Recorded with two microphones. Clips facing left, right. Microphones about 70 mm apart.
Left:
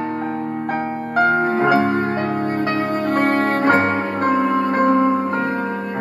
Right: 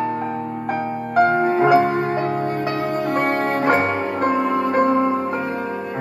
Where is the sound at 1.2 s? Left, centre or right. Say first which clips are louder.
Right 1 dB; left.